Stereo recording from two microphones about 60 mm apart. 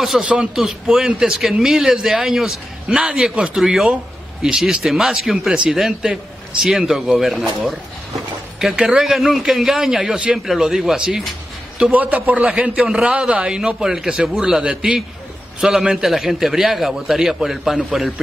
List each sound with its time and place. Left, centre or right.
0.2 s a man's voice: centre
3.9 s a sound: centre
4.6 s a man's voice: centre
11.9 s a man's voice: right; by 18.2 s centre